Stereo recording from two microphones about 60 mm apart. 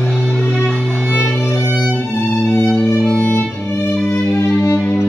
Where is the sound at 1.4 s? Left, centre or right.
Left.